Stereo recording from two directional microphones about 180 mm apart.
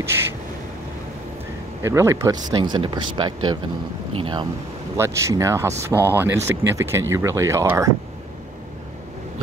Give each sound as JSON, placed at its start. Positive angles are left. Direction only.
{"t": 1.8, "sound": "speech", "side_deg": -15}
{"t": 4.9, "sound": "speech", "side_deg": -15}